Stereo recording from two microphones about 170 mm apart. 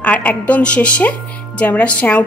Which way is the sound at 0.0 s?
10° left (ahead or behind).